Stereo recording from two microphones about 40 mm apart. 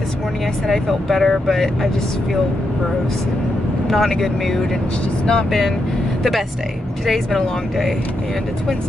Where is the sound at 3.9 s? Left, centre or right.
Centre.